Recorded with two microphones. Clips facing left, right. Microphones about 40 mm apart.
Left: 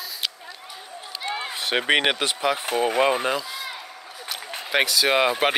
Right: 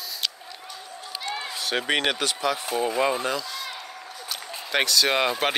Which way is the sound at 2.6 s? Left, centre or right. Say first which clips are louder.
Left 4 dB; left.